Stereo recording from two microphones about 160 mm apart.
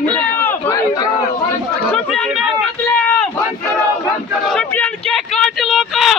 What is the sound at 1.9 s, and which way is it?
Speech, 5° left (ahead or behind).